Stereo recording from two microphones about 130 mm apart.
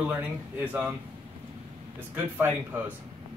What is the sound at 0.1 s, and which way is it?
Speech, 15° right (ahead or behind).